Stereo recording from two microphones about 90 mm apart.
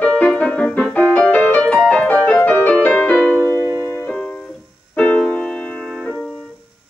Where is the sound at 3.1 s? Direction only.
5° left (ahead or behind).